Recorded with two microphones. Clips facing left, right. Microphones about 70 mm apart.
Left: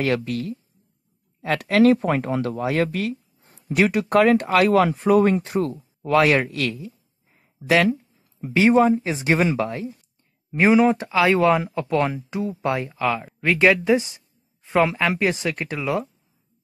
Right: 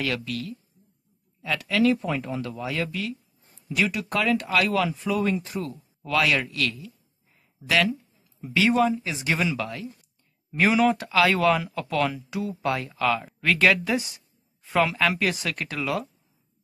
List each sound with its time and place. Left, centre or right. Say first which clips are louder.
0.0 s speech: left 6 dB; left; by 16.1 s centre